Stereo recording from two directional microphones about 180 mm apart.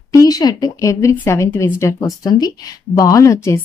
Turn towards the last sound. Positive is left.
turn(degrees=15)  # may be behind; listen again after turning